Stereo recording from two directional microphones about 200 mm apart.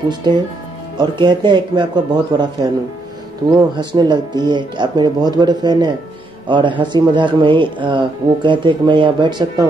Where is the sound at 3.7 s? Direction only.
20° right (ahead or behind).